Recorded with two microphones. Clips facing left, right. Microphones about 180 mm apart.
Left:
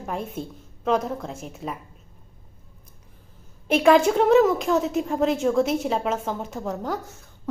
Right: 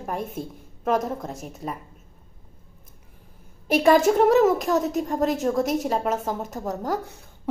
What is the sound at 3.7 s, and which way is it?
A woman's voice, 5° right (ahead or behind).